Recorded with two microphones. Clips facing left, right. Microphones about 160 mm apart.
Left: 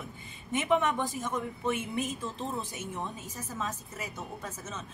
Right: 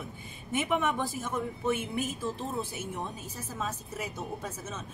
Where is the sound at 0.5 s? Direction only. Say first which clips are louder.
Left 2 dB; 5° right (ahead or behind).